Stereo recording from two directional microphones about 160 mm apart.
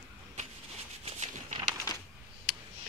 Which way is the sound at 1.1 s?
45° right (ahead or behind).